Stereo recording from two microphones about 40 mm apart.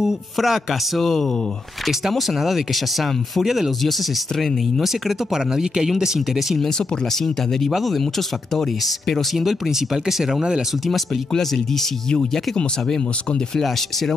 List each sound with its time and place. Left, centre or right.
0.0 s speech: centre
4.8 s speech: centre
7.7 s speech: centre
11.3 s speech: centre
12.1 s speech: centre